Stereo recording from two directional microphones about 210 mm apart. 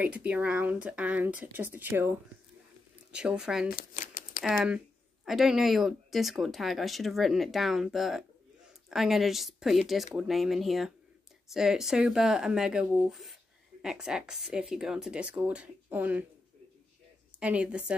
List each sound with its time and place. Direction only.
0.0 s speech: 5° right (ahead or behind)
3.1 s speech: 5° right (ahead or behind)
3.7 s shuffling cards: 40° left (ahead or behind)
4.4 s speech: 5° right (ahead or behind)
17.4 s speech: 5° right (ahead or behind)